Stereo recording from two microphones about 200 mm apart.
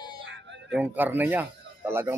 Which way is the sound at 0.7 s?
5° right (ahead or behind).